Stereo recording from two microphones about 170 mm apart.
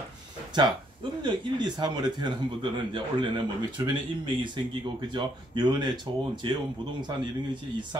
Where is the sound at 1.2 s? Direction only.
25° right (ahead or behind).